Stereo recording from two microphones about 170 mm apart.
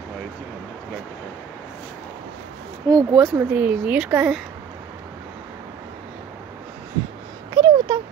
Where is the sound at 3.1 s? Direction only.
5° right (ahead or behind).